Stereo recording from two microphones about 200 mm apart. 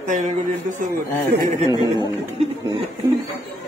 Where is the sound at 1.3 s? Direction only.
45° right (ahead or behind).